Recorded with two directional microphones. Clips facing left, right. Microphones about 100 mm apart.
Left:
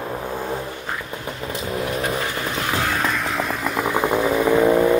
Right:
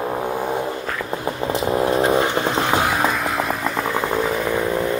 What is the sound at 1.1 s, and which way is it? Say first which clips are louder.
Vehicle: right 6 dB; 30° right (ahead or behind).